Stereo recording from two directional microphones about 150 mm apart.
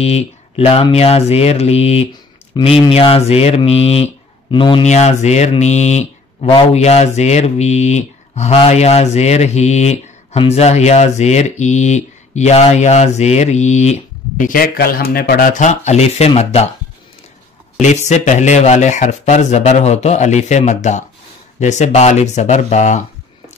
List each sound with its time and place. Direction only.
0.0 s speech: 40° left (ahead or behind)
4.8 s speech: 50° left (ahead or behind)
14.5 s speech: 75° left (ahead or behind); by 16.7 s 45° left (ahead or behind)
17.7 s speech: 50° left (ahead or behind)